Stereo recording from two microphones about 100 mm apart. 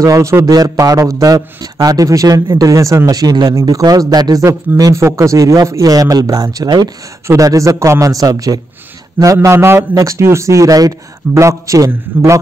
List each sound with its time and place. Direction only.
0.0 s a man's voice: 30° right (ahead or behind)